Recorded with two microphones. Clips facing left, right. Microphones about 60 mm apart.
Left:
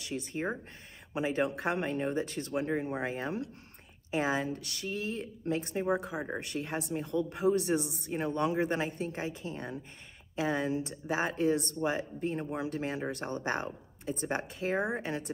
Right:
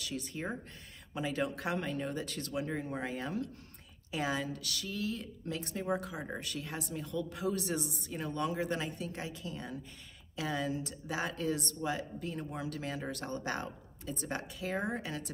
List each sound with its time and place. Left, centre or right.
0.0 s speech: left
6.4 s a woman's voice: left